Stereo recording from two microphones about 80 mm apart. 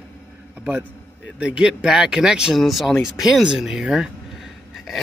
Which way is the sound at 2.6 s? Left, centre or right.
Centre.